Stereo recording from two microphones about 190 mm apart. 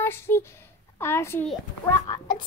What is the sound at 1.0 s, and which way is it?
A child's voice, 10° left (ahead or behind).